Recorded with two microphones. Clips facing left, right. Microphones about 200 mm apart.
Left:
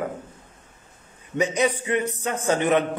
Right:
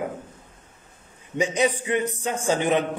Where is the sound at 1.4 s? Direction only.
10° right (ahead or behind).